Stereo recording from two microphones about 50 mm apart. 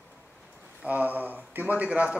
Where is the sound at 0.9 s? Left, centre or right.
Right.